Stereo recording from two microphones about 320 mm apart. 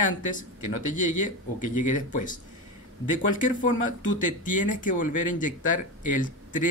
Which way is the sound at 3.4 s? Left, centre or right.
Left.